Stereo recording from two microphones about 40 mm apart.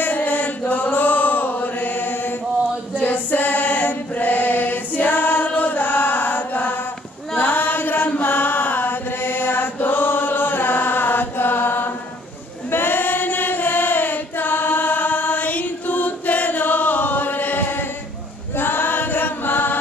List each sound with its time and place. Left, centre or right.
0.0 s chant: left
3.0 s choir: left
7.3 s a sound: left
8.2 s chant: left
12.7 s singing: left
18.6 s chant: left